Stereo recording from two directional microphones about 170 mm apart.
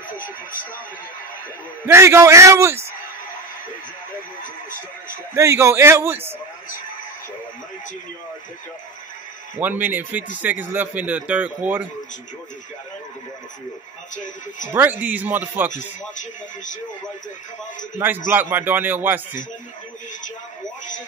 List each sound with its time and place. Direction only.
0.2 s speech: 55° left (ahead or behind)
1.9 s a man's voice: 15° right (ahead or behind)
4.4 s speech: 50° left (ahead or behind)
5.3 s a man's voice: 15° right (ahead or behind)
9.6 s a man's voice: 10° right (ahead or behind)
14.1 s speech: 50° left (ahead or behind)
14.7 s a man's voice: 10° right (ahead or behind)
15.7 s speech: 50° left (ahead or behind)
17.9 s a man's voice: 10° right (ahead or behind)